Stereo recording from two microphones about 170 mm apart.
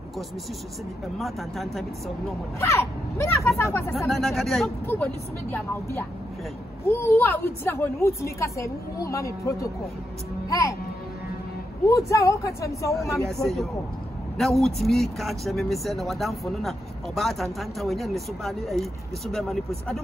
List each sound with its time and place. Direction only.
1.1 s speech: centre (ahead or behind)
2.6 s a woman's voice: 15° left (ahead or behind)
4.1 s speech: centre (ahead or behind)
4.8 s a woman's voice: 10° left (ahead or behind)
10.5 s music: 20° left (ahead or behind)
11.8 s speech: 20° left (ahead or behind)
13.2 s speech: centre (ahead or behind)